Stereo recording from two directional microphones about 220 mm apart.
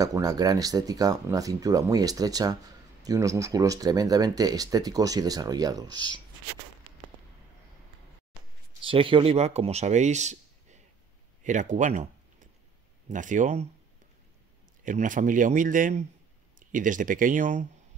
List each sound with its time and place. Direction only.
0.0 s speech: 15° right (ahead or behind)
8.8 s speech: 25° right (ahead or behind)
14.9 s speech: 35° right (ahead or behind)